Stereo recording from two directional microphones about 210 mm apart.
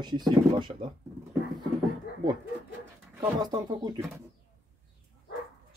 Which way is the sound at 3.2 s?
20° right (ahead or behind).